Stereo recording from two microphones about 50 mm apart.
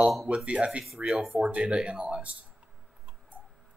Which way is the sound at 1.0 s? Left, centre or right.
Centre.